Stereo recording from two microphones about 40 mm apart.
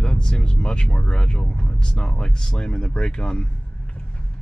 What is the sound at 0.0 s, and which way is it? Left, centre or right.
Vehicle, centre.